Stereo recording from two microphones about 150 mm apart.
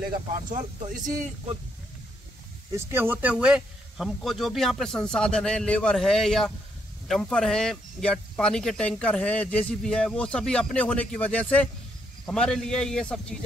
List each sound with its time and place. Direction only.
0.5 s speech: 55° right (ahead or behind)
2.7 s speech: 15° right (ahead or behind); by 13.2 s 5° left (ahead or behind)